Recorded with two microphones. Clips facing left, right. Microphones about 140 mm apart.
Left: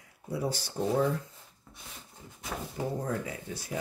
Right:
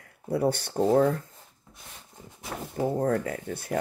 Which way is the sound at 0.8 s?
50° right (ahead or behind).